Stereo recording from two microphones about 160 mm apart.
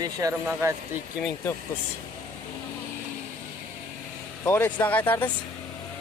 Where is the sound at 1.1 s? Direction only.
5° left (ahead or behind).